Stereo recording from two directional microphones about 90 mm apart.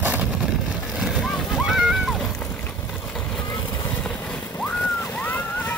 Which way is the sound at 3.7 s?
60° left (ahead or behind).